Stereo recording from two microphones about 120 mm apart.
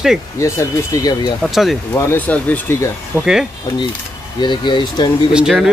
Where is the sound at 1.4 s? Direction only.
Centre (ahead or behind).